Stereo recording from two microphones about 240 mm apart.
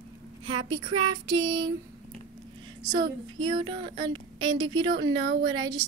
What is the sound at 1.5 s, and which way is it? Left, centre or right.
Speech, right.